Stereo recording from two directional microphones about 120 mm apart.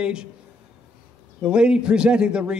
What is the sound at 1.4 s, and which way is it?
A man's voice, 5° right (ahead or behind).